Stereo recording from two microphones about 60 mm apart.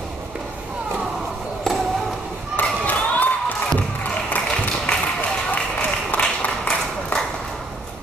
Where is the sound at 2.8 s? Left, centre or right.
Left.